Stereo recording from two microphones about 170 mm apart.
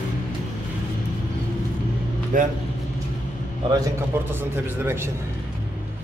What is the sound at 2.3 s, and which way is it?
Speech, 50° right (ahead or behind).